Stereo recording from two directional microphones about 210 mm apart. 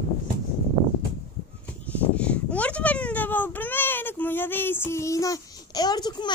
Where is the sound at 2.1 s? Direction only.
5° left (ahead or behind).